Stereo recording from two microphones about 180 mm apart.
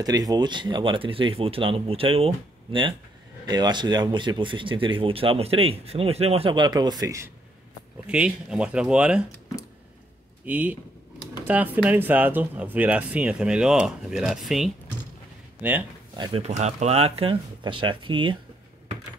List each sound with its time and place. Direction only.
0.0 s speech: 20° right (ahead or behind)
8.1 s speech: 5° right (ahead or behind)
10.4 s speech: 10° right (ahead or behind)
16.2 s speech: 35° right (ahead or behind)